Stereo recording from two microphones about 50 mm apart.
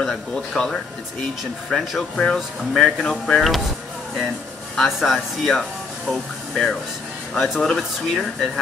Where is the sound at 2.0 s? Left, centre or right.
Centre.